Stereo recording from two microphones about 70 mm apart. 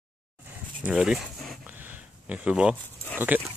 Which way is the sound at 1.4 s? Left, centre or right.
Centre.